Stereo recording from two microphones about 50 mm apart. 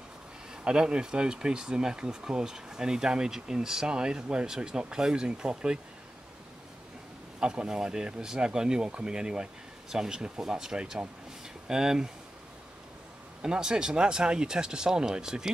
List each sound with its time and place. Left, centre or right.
0.7 s speech: centre
7.3 s speech: centre
13.4 s speech: centre